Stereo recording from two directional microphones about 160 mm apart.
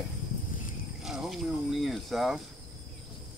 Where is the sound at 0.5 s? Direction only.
60° left (ahead or behind).